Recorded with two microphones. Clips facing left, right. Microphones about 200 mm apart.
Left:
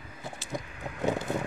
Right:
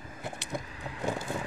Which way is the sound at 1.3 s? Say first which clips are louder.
Left 4 dB; 20° left (ahead or behind).